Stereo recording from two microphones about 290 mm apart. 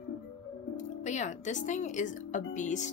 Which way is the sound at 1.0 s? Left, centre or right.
Left.